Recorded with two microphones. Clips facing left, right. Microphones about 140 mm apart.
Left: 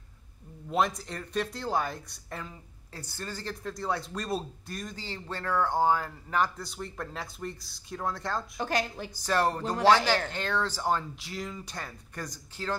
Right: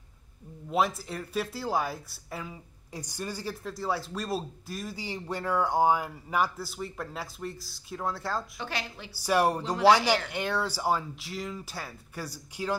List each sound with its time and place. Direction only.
0.7 s speech: 5° right (ahead or behind)
8.5 s a woman's voice: 45° left (ahead or behind)
9.1 s speech: 10° right (ahead or behind)